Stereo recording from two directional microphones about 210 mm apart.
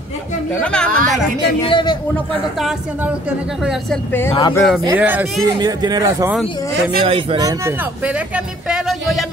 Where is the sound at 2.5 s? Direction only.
5° right (ahead or behind).